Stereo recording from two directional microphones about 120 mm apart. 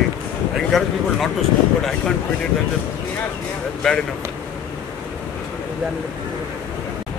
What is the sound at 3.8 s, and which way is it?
Speech, 5° left (ahead or behind).